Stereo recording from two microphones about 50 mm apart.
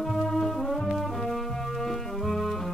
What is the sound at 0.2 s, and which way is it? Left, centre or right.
Brass instrument, centre.